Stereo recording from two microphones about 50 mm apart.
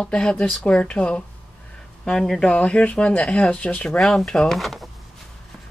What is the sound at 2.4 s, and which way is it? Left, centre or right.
Speech, left.